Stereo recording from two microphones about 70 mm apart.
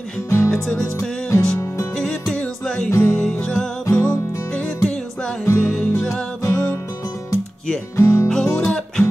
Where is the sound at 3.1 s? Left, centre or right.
Centre.